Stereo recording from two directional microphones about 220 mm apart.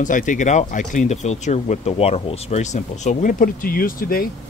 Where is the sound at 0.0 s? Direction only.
35° left (ahead or behind).